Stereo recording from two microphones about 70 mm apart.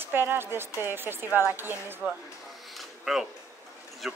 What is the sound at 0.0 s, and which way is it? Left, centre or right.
A woman's voice, right.